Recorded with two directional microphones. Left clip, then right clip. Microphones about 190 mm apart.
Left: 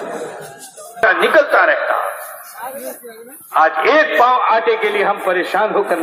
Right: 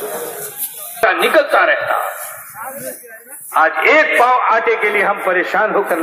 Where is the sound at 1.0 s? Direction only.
Centre (ahead or behind).